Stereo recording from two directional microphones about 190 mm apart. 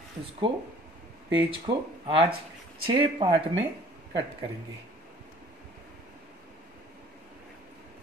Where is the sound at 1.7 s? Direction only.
25° right (ahead or behind).